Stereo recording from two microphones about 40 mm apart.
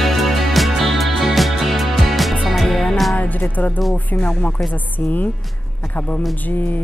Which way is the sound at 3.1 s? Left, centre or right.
Left.